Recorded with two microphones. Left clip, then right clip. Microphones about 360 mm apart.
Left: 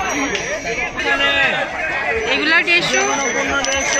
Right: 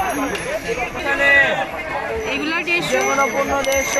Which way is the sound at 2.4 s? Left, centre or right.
Centre.